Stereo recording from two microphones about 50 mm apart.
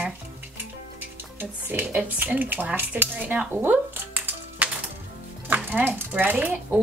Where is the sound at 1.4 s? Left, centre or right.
Right.